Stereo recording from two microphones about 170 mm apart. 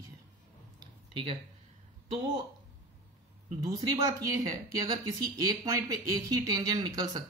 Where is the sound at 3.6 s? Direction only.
20° right (ahead or behind).